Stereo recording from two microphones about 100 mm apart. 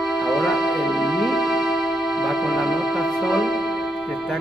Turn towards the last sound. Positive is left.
turn(degrees=0)  # may be behind; listen again after turning